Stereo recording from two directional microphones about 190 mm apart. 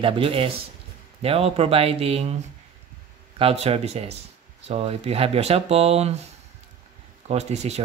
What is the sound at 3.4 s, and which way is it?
Speech, 30° right (ahead or behind).